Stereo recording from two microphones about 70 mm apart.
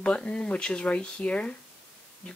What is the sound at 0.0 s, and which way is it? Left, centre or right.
Speech, centre.